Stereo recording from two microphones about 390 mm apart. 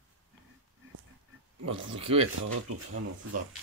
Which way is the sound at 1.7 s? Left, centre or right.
Centre.